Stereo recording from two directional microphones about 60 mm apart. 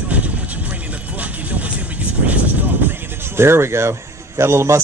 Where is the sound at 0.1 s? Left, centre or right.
Right.